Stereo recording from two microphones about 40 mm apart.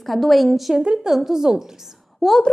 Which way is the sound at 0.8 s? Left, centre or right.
Right.